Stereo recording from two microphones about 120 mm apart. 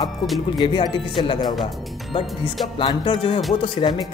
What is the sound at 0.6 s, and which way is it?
Speech, 40° left (ahead or behind).